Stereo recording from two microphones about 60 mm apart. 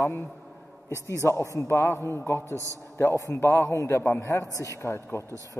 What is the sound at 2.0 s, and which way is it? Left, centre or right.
Speech, left.